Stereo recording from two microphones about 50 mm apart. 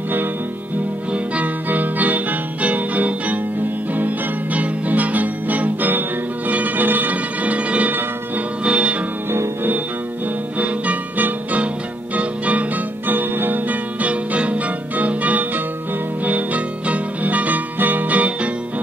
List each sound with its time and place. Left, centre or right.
1.1 s music: right
10.6 s music: right